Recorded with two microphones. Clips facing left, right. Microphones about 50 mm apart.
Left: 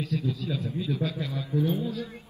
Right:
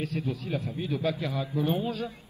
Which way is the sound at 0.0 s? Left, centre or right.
Right.